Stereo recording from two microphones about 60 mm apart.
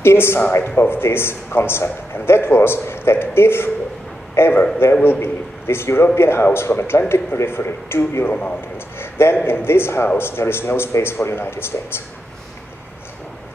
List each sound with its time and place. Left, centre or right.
0.0 s a man's voice: left